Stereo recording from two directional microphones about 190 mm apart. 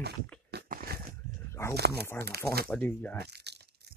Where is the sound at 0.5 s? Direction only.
55° right (ahead or behind).